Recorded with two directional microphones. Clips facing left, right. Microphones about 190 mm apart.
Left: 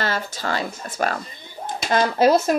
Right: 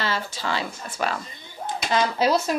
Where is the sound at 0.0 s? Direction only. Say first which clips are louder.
Left 2 dB; 45° left (ahead or behind).